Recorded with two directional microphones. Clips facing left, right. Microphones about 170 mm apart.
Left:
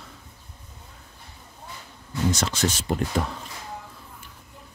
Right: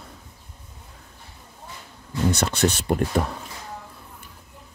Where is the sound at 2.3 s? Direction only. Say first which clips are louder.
Right 4 dB; 60° right (ahead or behind).